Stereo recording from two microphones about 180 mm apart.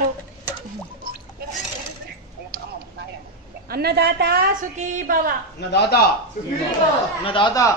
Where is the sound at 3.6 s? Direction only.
60° right (ahead or behind).